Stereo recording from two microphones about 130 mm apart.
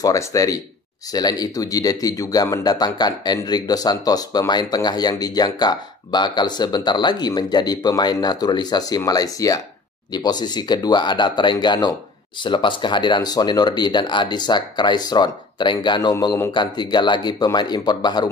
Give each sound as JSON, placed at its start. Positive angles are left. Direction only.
{"t": 0.0, "sound": "speech", "side_deg": 25}